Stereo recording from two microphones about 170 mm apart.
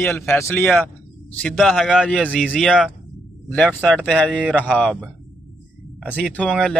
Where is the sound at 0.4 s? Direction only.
15° left (ahead or behind).